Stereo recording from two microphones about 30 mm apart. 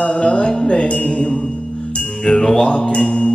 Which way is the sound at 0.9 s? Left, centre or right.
Left.